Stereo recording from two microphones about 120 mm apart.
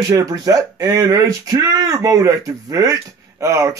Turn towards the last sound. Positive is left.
turn(degrees=-25)  # may be behind; listen again after turning